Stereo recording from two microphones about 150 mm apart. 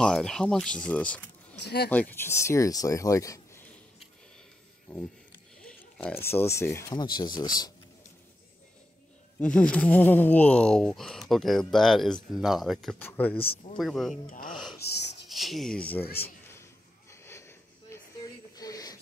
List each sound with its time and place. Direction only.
0.0 s speech: 5° left (ahead or behind)
1.6 s speech: 90° left
1.9 s speech: 10° left (ahead or behind)
4.9 s speech: 5° left (ahead or behind); by 7.7 s 25° left (ahead or behind)
9.4 s speech: 10° left (ahead or behind)
13.0 s speech: 10° left (ahead or behind)
13.4 s speech: 40° left (ahead or behind)
13.7 s speech: centre (ahead or behind)
17.1 s a sound: 15° left (ahead or behind)